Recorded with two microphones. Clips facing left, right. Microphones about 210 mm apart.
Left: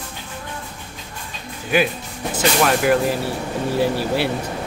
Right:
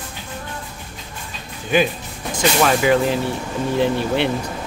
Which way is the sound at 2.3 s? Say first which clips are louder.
Right 1 dB; centre (ahead or behind).